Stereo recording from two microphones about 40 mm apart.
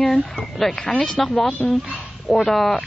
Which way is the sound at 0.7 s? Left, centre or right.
Centre.